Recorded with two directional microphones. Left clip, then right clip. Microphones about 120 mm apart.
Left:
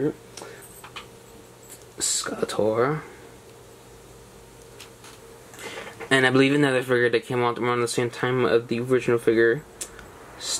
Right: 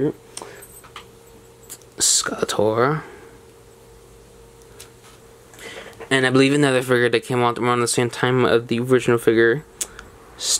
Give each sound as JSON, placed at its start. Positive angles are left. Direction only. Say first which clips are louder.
{"t": 0.0, "sound": "a sound", "louder": "right 4 dB", "side_deg": -45}
{"t": 2.0, "sound": "speech", "louder": "right 7 dB", "side_deg": -30}
{"t": 6.0, "sound": "speech", "louder": "right 2 dB", "side_deg": -15}